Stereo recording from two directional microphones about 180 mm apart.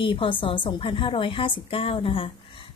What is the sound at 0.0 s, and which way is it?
A woman's voice, 30° left (ahead or behind).